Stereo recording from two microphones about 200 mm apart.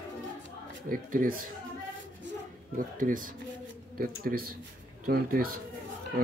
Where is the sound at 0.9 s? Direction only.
45° right (ahead or behind).